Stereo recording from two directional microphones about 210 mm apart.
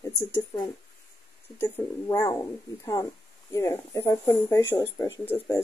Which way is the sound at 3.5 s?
15° left (ahead or behind).